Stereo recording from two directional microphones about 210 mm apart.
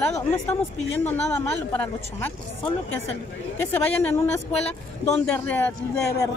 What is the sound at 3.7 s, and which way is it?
Speech, 10° left (ahead or behind).